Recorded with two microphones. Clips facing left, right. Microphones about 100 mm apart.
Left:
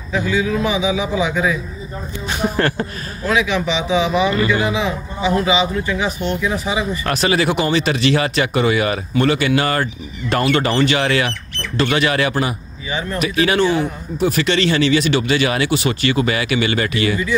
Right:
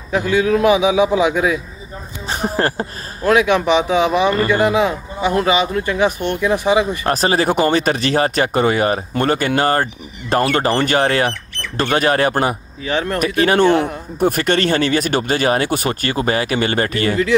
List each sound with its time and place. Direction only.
0.1 s a man's voice: 60° right (ahead or behind)
2.2 s speech: 35° right (ahead or behind)
3.3 s speech: 55° right (ahead or behind)
7.1 s speech: 40° right (ahead or behind)
12.8 s speech: 65° right (ahead or behind)
13.2 s speech: 45° right (ahead or behind)